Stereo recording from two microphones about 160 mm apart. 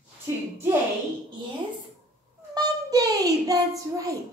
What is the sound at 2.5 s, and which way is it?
A child's voice, 25° right (ahead or behind).